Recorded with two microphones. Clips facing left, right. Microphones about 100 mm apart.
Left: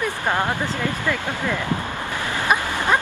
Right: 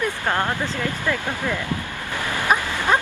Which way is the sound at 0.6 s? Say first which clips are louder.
Left 1 dB; 20° right (ahead or behind).